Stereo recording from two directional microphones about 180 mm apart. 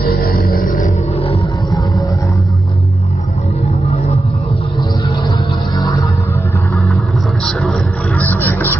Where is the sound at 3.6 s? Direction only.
35° left (ahead or behind).